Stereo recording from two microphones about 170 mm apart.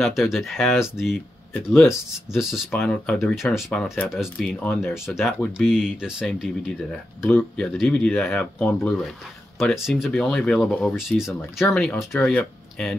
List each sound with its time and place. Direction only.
0.0 s speech: centre (ahead or behind)
7.2 s speech: 10° left (ahead or behind)
7.6 s speech: centre (ahead or behind)